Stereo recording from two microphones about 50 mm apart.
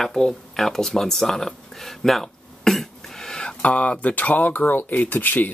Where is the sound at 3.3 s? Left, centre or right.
Left.